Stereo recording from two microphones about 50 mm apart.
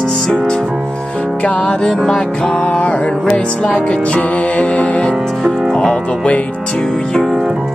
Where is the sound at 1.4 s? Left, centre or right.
Left.